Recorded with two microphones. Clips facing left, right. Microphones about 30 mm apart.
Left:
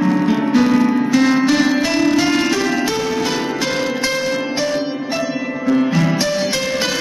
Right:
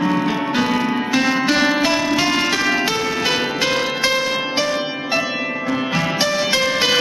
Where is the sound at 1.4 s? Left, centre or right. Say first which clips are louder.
Left 1 dB; right.